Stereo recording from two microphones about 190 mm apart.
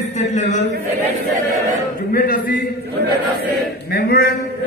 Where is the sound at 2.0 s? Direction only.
50° left (ahead or behind).